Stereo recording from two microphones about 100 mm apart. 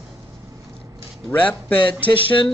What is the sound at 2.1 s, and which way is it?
Speech, 60° left (ahead or behind).